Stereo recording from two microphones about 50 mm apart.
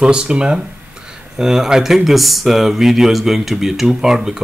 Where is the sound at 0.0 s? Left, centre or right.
Right.